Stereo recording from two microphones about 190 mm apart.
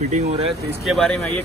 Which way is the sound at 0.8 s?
5° left (ahead or behind).